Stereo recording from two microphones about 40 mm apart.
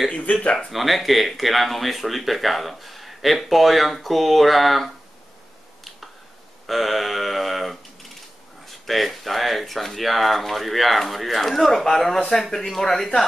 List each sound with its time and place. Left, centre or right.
0.2 s speech: left
0.7 s speech: centre
6.7 s speech: centre